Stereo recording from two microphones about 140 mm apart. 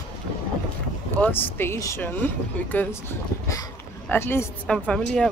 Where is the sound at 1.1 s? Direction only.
10° left (ahead or behind).